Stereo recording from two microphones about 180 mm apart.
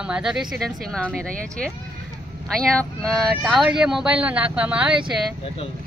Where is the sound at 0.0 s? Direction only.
5° right (ahead or behind).